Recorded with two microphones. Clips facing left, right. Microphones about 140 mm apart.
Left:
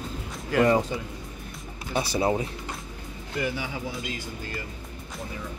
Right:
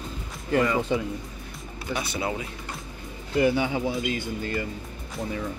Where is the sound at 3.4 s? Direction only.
25° right (ahead or behind).